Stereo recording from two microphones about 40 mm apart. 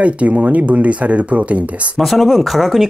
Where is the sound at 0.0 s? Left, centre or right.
Right.